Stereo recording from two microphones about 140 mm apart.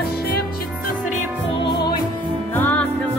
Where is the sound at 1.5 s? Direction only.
35° left (ahead or behind).